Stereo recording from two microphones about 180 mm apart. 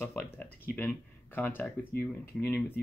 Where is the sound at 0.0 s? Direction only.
5° left (ahead or behind).